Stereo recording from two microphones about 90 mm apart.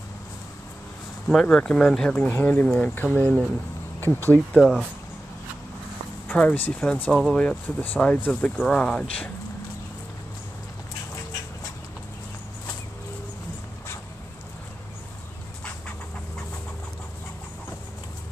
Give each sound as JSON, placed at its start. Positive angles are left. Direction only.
{"t": 1.2, "sound": "speech", "side_deg": 5}
{"t": 4.6, "sound": "speech", "side_deg": 0}
{"t": 6.2, "sound": "speech", "side_deg": 20}